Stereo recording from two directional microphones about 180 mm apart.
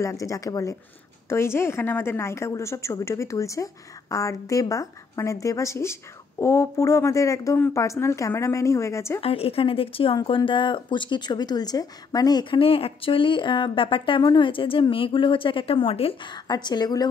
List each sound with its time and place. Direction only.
0.0 s a woman's voice: 15° left (ahead or behind)
9.2 s a woman's voice: 30° left (ahead or behind)